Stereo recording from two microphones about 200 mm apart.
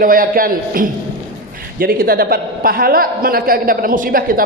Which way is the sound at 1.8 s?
50° right (ahead or behind).